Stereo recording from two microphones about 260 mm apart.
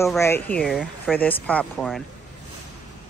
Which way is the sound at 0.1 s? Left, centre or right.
Centre.